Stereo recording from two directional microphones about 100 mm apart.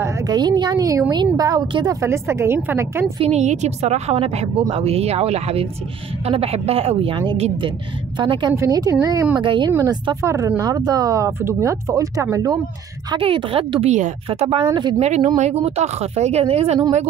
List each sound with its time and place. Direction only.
0.3 s a woman's voice: 45° right (ahead or behind); by 3.1 s 25° right (ahead or behind)
3.2 s a woman's voice: 90° right
7.3 s a woman's voice: 90° right
8.2 s a woman's voice: 50° right (ahead or behind)
8.5 s speech: 35° right (ahead or behind)
9.4 s speech: 55° right (ahead or behind)
10.2 s speech: 30° right (ahead or behind)
13.2 s speech: 65° right (ahead or behind)
14.3 s a woman's voice: 90° right
14.7 s a woman's voice: 50° right (ahead or behind)
15.0 s a woman's voice: 90° right